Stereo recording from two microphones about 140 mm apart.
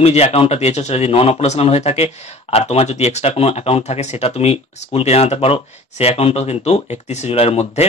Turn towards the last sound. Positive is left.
turn(degrees=45)  # may be behind; listen again after turning